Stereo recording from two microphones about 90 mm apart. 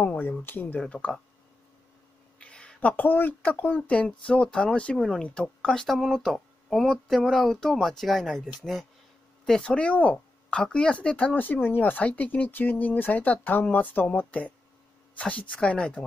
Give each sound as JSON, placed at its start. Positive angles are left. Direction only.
{"t": 0.0, "sound": "speech", "side_deg": 20}
{"t": 2.4, "sound": "speech", "side_deg": 10}